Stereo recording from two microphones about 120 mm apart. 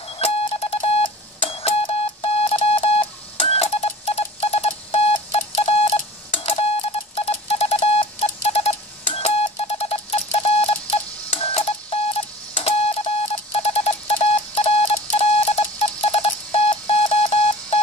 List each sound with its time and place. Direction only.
0.1 s beep: 55° left (ahead or behind)
11.2 s a sound: 55° left (ahead or behind)
12.5 s alarm clock: 55° left (ahead or behind)